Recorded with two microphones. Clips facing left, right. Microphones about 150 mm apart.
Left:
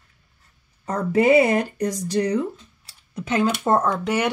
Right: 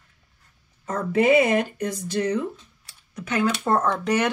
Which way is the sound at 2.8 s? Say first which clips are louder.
Left 5 dB; 30° left (ahead or behind).